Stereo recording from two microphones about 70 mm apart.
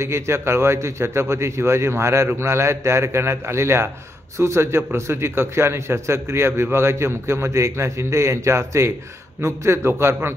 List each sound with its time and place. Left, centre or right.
0.0 s a man's voice: right